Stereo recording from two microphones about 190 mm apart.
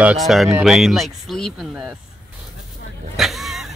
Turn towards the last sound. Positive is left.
turn(degrees=0)  # may be behind; listen again after turning